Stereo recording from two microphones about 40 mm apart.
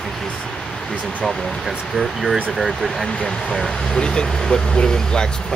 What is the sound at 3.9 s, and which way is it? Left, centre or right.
Speech, left.